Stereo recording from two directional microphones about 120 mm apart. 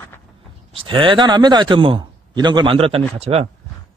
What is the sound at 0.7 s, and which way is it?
A man's voice, 45° right (ahead or behind).